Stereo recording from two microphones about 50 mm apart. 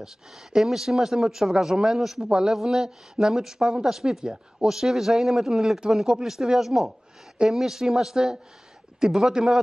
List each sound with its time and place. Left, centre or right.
0.0 s speech: centre